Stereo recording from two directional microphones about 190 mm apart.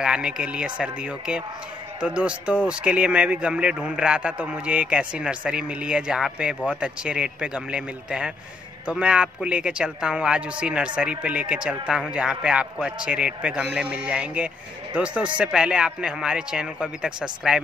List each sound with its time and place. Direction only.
0.0 s speech: 5° right (ahead or behind)